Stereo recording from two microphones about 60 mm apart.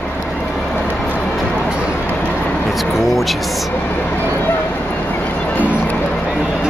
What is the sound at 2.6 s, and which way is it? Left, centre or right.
Speech, centre.